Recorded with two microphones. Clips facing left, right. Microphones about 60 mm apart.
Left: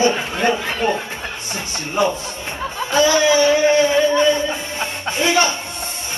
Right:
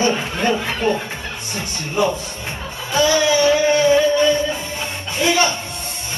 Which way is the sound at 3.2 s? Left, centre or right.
Centre.